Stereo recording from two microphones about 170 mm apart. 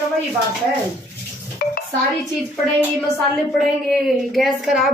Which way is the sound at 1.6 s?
60° left (ahead or behind).